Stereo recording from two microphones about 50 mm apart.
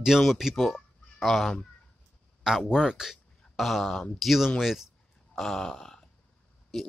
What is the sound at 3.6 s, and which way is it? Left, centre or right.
Speech, centre.